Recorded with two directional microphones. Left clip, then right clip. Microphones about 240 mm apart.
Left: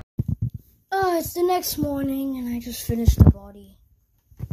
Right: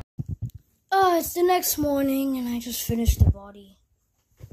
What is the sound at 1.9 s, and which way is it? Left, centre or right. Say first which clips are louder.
Speech: right 3 dB; right.